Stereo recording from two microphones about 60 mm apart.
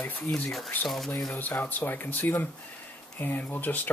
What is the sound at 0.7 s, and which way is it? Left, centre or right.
Speech, left.